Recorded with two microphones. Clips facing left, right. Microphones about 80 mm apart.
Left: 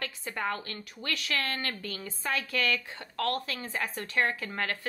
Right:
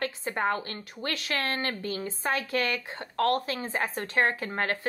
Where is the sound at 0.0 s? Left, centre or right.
Right.